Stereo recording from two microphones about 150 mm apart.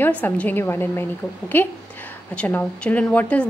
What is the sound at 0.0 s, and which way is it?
A woman's voice, 10° left (ahead or behind).